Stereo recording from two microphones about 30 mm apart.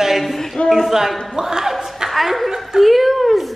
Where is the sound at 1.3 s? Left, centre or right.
Centre.